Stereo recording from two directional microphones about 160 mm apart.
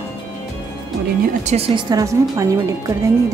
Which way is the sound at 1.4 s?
45° right (ahead or behind).